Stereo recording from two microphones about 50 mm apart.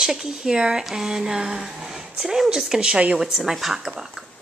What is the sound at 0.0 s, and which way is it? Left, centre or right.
Speech, centre.